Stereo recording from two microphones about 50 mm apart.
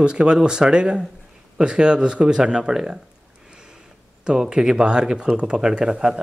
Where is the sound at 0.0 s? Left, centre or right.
Centre.